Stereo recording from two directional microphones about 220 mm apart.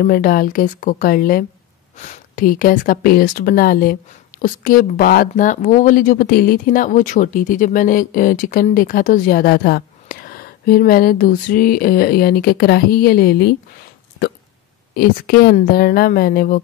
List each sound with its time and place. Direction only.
0.0 s speech: 40° left (ahead or behind)
15.0 s a woman's voice: 45° left (ahead or behind)